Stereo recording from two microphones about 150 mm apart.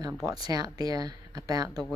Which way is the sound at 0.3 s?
25° right (ahead or behind).